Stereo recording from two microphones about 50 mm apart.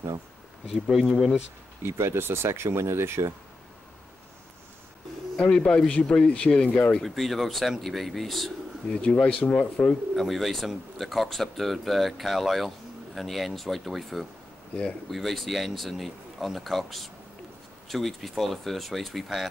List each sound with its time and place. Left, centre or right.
0.7 s speech: centre
1.8 s speech: right
5.4 s speech: centre
7.1 s speech: centre
8.8 s speech: left
10.1 s speech: centre